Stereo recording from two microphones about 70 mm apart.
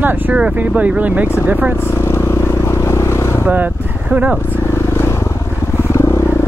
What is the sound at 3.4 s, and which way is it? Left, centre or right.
Speech, right.